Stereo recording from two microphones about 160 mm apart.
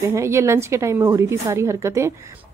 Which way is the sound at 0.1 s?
15° right (ahead or behind).